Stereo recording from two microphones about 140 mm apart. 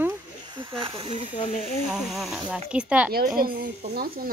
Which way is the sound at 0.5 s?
35° right (ahead or behind).